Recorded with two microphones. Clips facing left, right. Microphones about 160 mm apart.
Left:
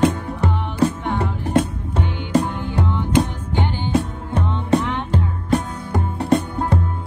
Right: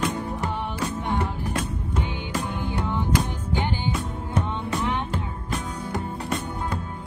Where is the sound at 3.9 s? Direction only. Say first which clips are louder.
Left 6 dB; 30° left (ahead or behind).